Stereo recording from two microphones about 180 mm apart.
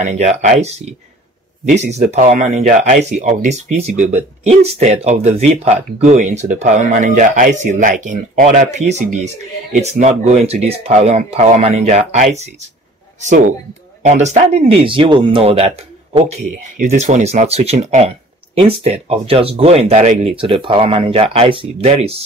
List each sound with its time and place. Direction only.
0.0 s speech: 40° right (ahead or behind)
14.0 s speech: 40° right (ahead or behind)